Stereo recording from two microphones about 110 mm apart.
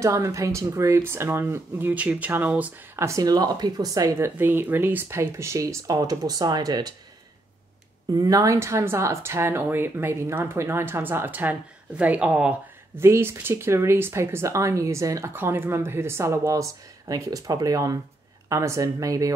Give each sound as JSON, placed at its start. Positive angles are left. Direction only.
{"t": 0.0, "sound": "speech", "side_deg": -30}
{"t": 3.1, "sound": "speech", "side_deg": -35}
{"t": 8.1, "sound": "speech", "side_deg": -35}
{"t": 12.9, "sound": "speech", "side_deg": -20}